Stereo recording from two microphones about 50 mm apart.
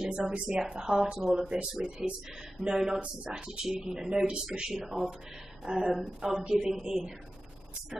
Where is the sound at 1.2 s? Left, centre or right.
Centre.